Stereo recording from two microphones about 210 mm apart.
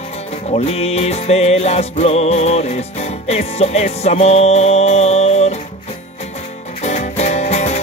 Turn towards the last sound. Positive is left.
turn(degrees=30)  # may be behind; listen again after turning